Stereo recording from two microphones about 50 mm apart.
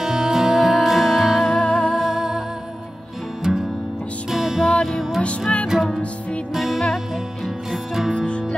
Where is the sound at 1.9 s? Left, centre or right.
Centre.